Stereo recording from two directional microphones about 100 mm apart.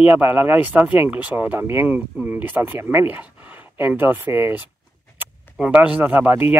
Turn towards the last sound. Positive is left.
turn(degrees=-20)  # may be behind; listen again after turning